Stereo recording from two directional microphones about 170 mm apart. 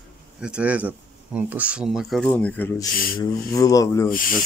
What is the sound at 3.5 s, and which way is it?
Speech, 20° left (ahead or behind).